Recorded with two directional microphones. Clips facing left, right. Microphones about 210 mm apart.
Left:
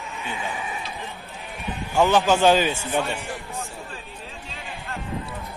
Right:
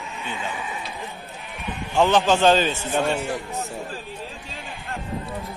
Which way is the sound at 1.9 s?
10° left (ahead or behind).